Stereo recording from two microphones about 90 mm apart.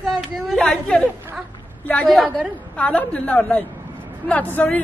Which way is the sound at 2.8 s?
15° left (ahead or behind).